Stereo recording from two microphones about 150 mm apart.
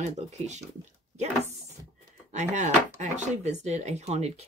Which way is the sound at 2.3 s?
50° right (ahead or behind).